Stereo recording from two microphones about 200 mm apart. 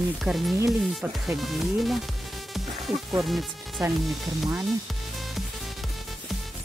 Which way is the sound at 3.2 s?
Centre (ahead or behind).